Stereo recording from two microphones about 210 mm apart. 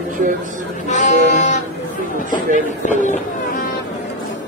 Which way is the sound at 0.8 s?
35° left (ahead or behind).